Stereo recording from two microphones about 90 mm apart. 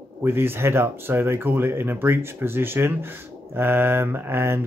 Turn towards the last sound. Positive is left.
turn(degrees=-25)  # may be behind; listen again after turning